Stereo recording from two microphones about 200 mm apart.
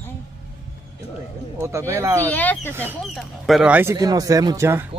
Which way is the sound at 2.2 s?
10° left (ahead or behind).